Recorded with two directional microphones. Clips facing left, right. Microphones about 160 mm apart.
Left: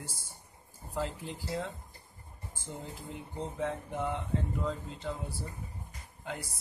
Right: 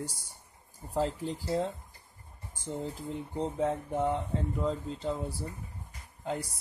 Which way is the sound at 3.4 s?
35° right (ahead or behind).